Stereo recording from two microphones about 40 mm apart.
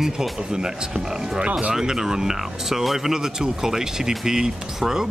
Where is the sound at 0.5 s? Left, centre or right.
Centre.